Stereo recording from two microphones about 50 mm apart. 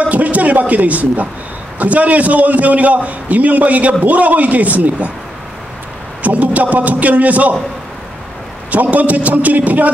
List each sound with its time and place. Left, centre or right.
0.0 s a man's voice: right
6.2 s a man's voice: right
8.6 s a man's voice: right